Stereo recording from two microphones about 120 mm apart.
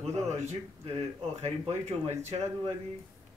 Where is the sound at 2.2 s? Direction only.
65° right (ahead or behind).